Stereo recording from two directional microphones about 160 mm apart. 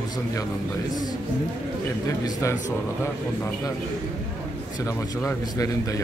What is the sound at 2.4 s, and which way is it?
Speech, 20° left (ahead or behind).